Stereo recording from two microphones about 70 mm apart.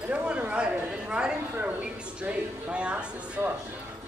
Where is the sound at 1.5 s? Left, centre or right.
Right.